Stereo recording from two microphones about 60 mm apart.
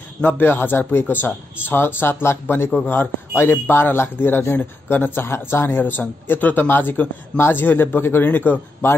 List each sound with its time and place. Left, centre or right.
0.2 s speech: left